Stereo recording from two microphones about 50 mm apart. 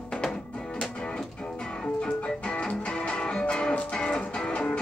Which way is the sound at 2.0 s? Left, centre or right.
Centre.